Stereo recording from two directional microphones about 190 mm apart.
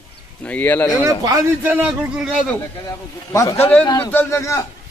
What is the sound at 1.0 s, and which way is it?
Speech, 15° right (ahead or behind).